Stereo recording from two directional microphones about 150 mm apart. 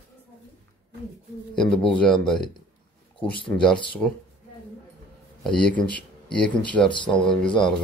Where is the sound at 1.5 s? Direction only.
5° left (ahead or behind).